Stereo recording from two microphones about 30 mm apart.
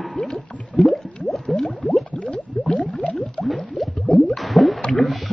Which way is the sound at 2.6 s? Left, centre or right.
Centre.